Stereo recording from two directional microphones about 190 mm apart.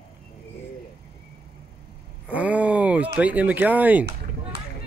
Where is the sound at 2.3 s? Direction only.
10° right (ahead or behind).